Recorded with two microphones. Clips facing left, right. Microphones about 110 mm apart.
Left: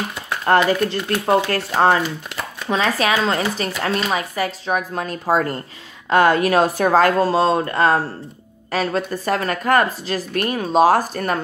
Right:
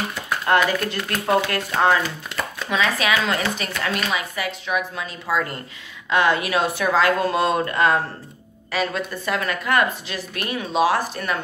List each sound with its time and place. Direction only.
0.5 s speech: 35° left (ahead or behind)
2.7 s speech: 35° left (ahead or behind)